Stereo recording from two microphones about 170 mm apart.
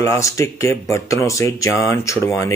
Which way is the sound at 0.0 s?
20° left (ahead or behind).